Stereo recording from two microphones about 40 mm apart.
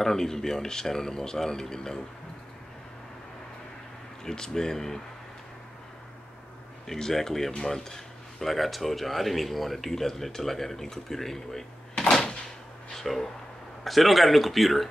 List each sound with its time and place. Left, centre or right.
0.0 s speech: centre
4.2 s speech: centre
6.9 s speech: centre
12.0 s door: centre
12.9 s speech: centre